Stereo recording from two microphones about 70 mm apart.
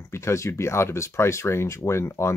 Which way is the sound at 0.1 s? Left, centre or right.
Left.